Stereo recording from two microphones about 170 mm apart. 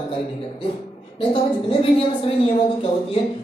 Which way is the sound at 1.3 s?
30° left (ahead or behind).